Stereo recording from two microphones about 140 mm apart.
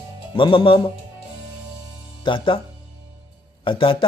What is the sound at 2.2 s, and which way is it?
Speech, 35° left (ahead or behind).